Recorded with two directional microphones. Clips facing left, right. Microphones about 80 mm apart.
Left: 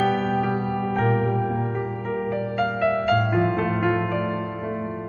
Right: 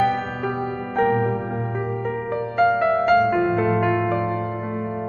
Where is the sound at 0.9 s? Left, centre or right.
Right.